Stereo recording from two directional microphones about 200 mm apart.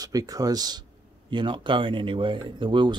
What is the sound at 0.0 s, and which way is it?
Speech, 20° right (ahead or behind).